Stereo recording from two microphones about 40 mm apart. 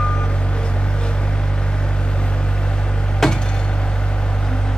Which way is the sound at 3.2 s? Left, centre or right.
Centre.